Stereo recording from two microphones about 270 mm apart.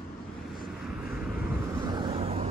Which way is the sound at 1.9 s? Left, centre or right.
Centre.